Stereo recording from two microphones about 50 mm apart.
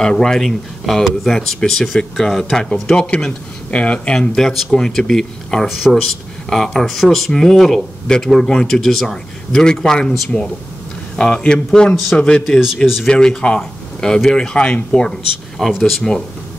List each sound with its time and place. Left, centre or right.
0.0 s a man's voice: centre
4.1 s a man's voice: centre
11.1 s a man's voice: centre
12.2 s speech: left
12.4 s speech: centre
13.0 s a man's voice: centre